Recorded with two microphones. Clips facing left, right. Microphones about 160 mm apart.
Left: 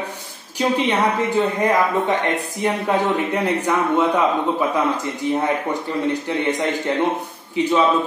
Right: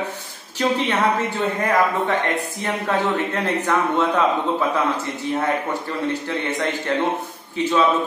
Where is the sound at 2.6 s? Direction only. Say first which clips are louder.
Left 4 dB; 15° left (ahead or behind).